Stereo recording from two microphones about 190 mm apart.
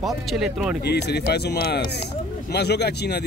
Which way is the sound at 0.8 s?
60° left (ahead or behind).